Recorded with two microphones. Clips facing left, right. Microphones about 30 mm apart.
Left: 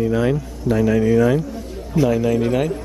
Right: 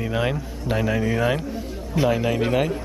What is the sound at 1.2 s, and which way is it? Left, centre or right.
Speech, right.